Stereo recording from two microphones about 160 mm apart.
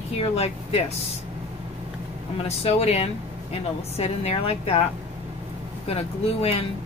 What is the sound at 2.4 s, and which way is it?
Speech, 40° left (ahead or behind).